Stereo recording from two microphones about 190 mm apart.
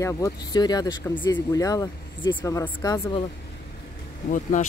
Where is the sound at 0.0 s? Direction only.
15° left (ahead or behind).